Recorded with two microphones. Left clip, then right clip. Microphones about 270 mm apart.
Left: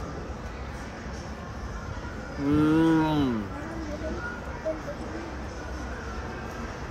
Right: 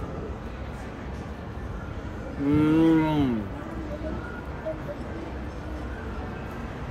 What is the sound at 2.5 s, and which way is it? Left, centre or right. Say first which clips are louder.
Cattle: right 1 dB; centre.